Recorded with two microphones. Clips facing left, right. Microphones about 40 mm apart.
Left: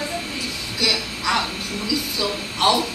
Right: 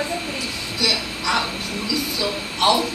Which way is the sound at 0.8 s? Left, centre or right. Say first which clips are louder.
Even; centre.